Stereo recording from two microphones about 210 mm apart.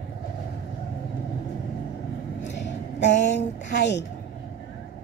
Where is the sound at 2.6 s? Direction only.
55° left (ahead or behind).